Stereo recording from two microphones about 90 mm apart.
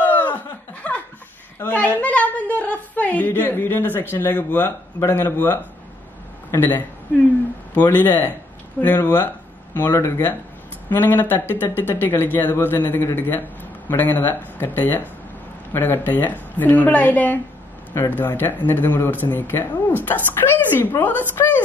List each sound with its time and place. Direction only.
0.0 s laughter: 20° left (ahead or behind)
1.6 s a woman's voice: 20° left (ahead or behind)